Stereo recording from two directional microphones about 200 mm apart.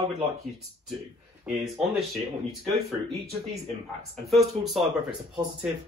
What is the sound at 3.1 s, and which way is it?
Speech, 15° right (ahead or behind).